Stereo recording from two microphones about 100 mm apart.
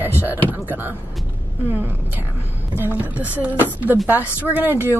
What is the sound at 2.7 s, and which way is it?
A woman's voice, 20° right (ahead or behind).